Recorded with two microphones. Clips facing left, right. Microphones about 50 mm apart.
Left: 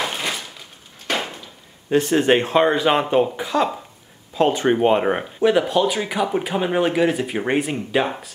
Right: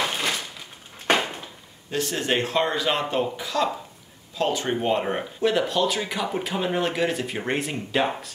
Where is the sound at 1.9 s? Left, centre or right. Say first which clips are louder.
Left 9 dB; left.